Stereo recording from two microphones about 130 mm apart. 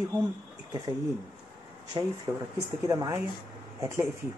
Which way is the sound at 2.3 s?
20° right (ahead or behind).